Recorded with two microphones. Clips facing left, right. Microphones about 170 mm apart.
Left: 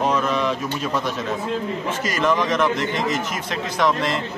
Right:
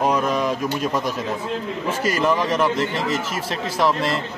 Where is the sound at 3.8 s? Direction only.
5° right (ahead or behind).